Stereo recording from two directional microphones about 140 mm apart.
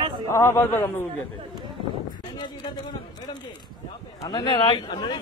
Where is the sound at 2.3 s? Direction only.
30° left (ahead or behind).